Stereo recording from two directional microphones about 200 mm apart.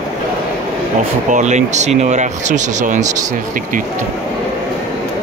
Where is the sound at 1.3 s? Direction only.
35° right (ahead or behind).